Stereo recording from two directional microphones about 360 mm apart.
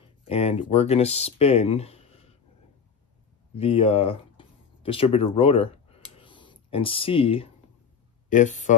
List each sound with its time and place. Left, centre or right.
0.0 s speech: centre
3.5 s speech: centre